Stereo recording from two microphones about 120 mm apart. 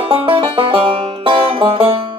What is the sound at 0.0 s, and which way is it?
Music, 50° right (ahead or behind).